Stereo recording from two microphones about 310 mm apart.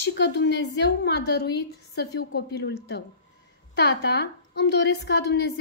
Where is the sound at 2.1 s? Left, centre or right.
Left.